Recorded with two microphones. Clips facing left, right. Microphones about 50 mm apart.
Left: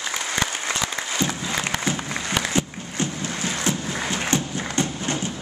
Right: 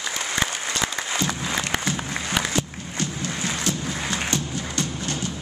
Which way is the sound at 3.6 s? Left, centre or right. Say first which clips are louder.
Left 2 dB; left.